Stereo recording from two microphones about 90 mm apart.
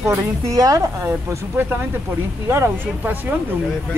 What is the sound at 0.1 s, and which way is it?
Speech, 35° right (ahead or behind).